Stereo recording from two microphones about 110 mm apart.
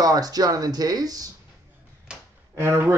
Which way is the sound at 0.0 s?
35° right (ahead or behind).